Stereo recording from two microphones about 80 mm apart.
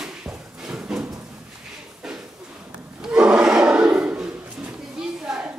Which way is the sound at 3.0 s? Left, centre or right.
Centre.